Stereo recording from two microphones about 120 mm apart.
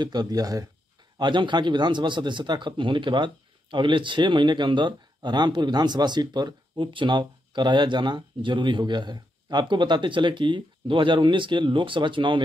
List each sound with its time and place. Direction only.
0.0 s speech: 35° right (ahead or behind)